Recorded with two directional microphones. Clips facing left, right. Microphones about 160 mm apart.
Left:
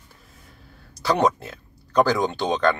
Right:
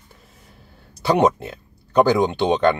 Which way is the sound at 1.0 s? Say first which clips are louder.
Right 3 dB; 20° right (ahead or behind).